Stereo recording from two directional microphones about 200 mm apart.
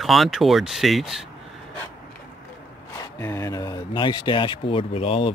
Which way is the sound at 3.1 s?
15° left (ahead or behind).